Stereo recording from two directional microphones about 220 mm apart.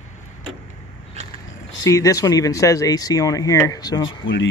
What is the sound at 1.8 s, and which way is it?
Speech, 15° left (ahead or behind).